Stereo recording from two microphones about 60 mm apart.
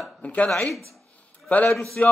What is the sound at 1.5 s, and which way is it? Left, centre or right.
Speech, left.